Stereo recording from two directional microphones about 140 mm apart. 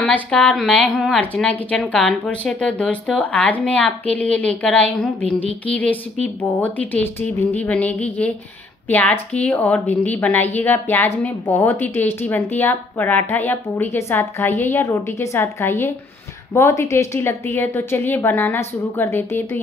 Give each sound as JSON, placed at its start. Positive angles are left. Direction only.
{"t": 0.0, "sound": "a woman's voice", "side_deg": 5}